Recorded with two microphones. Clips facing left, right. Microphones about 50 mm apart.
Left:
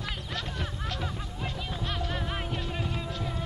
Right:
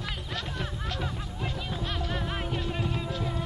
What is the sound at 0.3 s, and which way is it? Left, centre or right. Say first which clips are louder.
Music: right 1 dB; centre.